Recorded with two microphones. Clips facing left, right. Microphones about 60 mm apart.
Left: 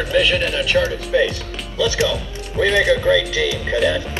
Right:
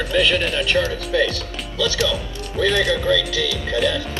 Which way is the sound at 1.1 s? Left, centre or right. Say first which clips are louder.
Left 2 dB; left.